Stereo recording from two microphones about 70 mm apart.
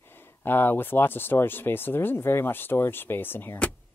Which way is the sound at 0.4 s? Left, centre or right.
Left.